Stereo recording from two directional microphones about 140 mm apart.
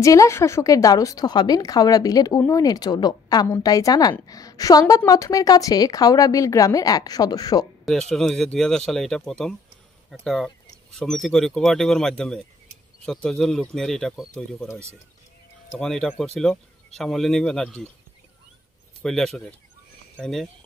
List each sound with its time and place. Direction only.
0.0 s a woman's voice: 25° left (ahead or behind)
7.8 s speech: 5° left (ahead or behind)
15.8 s speech: 5° left (ahead or behind)
19.0 s speech: centre (ahead or behind)